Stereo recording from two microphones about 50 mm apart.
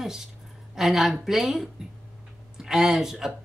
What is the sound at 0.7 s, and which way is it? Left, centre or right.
Speech, centre.